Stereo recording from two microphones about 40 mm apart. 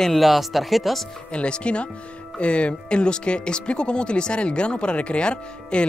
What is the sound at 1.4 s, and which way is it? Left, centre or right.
Speech, left.